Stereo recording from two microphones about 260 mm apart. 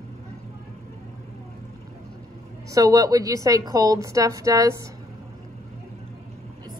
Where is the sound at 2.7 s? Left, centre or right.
Centre.